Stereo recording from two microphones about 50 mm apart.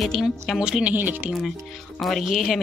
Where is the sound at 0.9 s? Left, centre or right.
Right.